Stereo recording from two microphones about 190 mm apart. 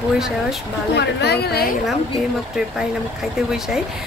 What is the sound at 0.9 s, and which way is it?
Speech, 60° left (ahead or behind).